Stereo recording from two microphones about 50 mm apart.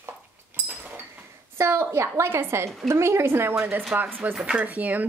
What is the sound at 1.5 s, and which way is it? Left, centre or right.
A woman's voice, right.